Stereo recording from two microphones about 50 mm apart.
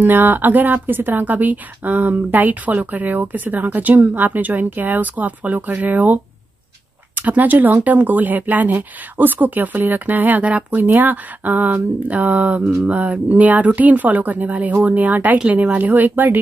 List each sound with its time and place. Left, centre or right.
0.0 s speech: right